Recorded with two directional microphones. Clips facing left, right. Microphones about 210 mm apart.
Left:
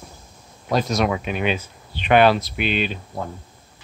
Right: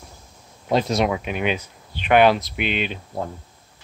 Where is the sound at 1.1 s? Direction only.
10° right (ahead or behind).